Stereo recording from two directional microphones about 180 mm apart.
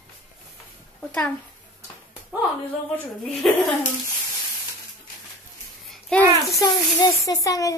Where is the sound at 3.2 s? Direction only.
Centre (ahead or behind).